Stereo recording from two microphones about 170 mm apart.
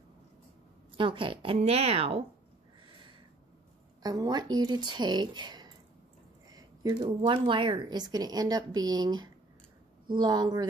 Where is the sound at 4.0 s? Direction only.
20° right (ahead or behind).